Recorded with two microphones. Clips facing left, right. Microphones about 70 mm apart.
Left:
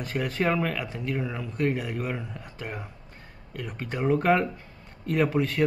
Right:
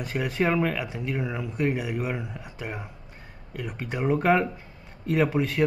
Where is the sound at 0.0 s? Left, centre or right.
Centre.